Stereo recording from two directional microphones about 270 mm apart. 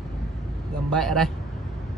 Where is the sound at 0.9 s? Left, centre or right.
Centre.